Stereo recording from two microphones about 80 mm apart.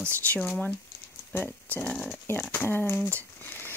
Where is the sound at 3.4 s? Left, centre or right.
Left.